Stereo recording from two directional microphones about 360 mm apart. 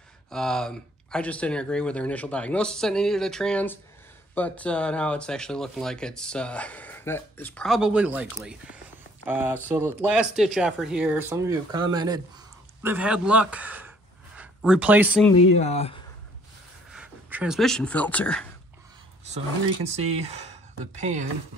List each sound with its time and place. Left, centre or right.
0.3 s speech: centre
15.5 s speech: centre
16.9 s speech: centre
19.2 s speech: centre